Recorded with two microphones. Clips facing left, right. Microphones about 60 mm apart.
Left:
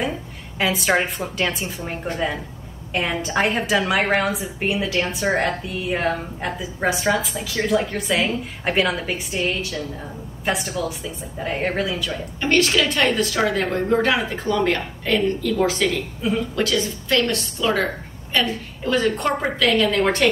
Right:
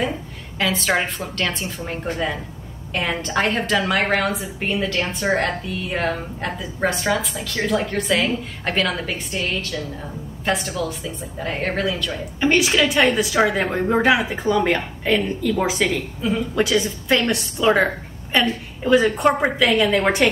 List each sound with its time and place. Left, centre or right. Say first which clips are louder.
0.6 s a woman's voice: left 1 dB; centre
12.4 s a woman's voice: right 1 dB; centre